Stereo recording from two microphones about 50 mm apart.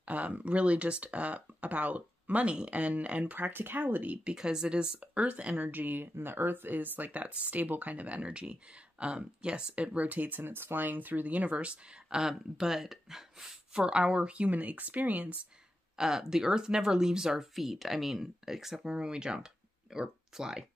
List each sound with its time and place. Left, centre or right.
0.0 s speech: right
3.3 s speech: right
10.4 s speech: right
12.2 s speech: centre
13.7 s speech: centre; by 15.3 s right
16.0 s speech: centre